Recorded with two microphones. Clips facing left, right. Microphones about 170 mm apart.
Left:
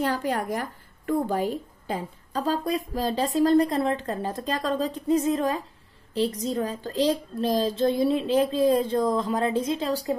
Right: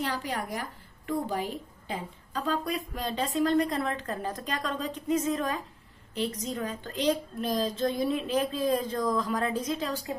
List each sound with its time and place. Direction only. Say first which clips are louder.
0.0 s a woman's voice: left 6 dB; 50° left (ahead or behind)